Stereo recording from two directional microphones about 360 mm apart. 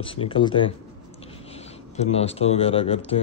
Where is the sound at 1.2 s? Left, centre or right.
Centre.